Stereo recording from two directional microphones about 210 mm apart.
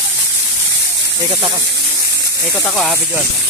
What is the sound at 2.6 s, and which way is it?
Speech, centre (ahead or behind).